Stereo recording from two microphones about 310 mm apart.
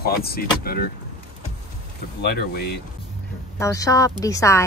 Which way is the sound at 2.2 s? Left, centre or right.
Left.